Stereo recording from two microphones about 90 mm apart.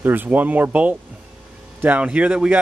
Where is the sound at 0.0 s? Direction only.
20° right (ahead or behind).